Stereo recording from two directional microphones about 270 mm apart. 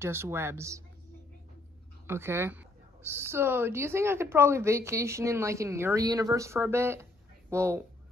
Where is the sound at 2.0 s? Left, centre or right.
Centre.